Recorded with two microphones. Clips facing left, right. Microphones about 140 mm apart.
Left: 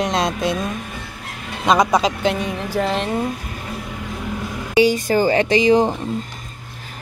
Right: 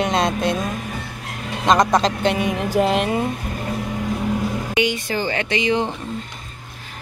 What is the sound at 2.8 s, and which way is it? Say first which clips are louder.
Speech: right 3 dB; 15° right (ahead or behind).